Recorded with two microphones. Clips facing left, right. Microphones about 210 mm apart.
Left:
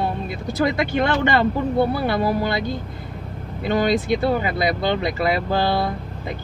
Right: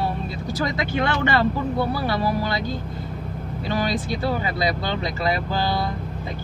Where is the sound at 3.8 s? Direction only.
55° left (ahead or behind).